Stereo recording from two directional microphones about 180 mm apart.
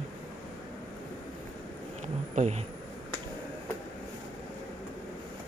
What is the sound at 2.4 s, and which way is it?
Speech, 40° right (ahead or behind).